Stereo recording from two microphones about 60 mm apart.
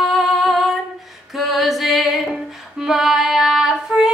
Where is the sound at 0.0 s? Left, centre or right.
Centre.